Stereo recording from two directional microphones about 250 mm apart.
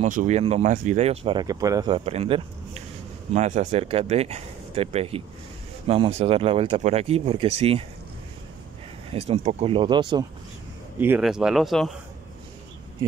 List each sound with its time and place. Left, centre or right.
0.0 s speech: right
9.1 s speech: right
11.0 s speech: centre